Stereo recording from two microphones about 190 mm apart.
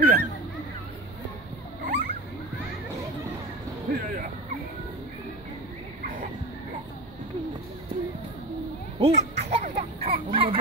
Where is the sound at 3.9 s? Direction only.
50° right (ahead or behind).